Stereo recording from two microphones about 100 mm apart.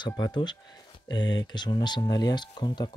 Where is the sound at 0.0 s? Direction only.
50° left (ahead or behind).